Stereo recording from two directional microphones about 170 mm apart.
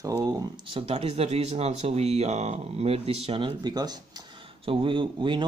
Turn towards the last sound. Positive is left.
turn(degrees=-30)  # may be behind; listen again after turning